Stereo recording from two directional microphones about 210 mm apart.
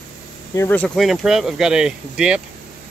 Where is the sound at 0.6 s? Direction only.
5° left (ahead or behind).